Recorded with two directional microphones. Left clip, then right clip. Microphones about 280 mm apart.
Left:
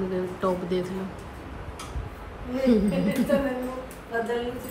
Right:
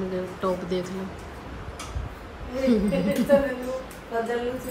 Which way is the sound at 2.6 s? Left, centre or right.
Centre.